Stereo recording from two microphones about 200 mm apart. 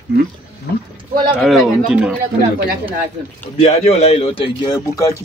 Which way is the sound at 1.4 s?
Centre (ahead or behind).